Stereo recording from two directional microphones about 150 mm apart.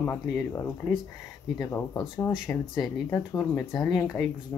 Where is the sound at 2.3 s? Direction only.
Centre (ahead or behind).